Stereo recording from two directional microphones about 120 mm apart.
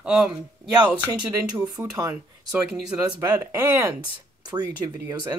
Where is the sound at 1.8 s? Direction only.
10° right (ahead or behind).